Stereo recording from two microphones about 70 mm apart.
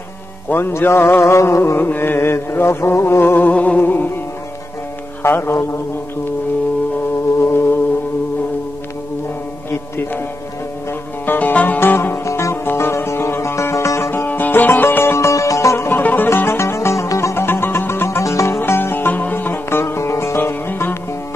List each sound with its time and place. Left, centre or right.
0.5 s mantra: left
1.3 s music: left
1.8 s mantra: left
3.5 s music: left
5.2 s mantra: left
7.3 s music: left
9.7 s music: left
12.3 s music: left
14.1 s music: left
16.0 s music: left
16.3 s music: left
18.2 s music: left
18.6 s music: left